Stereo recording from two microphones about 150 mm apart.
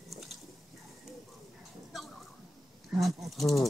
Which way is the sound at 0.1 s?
Centre (ahead or behind).